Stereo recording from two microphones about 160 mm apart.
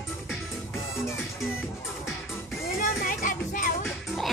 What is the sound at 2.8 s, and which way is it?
Music, 60° left (ahead or behind).